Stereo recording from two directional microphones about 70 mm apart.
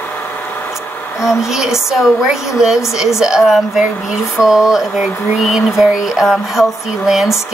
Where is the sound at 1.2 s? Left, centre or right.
Centre.